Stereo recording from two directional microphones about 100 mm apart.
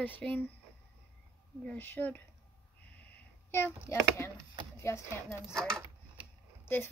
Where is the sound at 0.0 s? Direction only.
15° left (ahead or behind).